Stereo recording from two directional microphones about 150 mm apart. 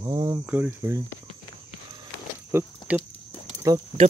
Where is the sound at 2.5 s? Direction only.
15° right (ahead or behind).